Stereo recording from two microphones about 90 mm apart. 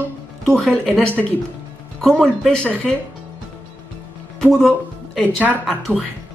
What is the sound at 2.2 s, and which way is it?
Speech, 10° left (ahead or behind).